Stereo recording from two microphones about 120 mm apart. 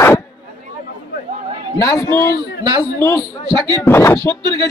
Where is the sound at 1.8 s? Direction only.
30° left (ahead or behind).